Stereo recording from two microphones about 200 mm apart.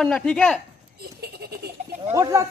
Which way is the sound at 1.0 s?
55° right (ahead or behind).